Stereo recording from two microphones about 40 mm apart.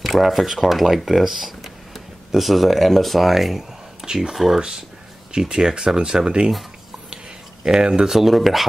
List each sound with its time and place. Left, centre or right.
0.0 s speech: centre
4.0 s speech: centre
7.6 s speech: centre
8.1 s speech: centre